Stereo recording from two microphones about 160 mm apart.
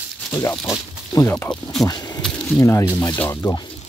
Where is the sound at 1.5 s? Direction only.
Centre (ahead or behind).